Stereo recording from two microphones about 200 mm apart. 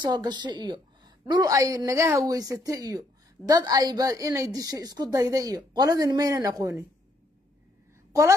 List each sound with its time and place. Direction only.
0.0 s a woman's voice: 20° right (ahead or behind)
8.1 s a woman's voice: 15° right (ahead or behind)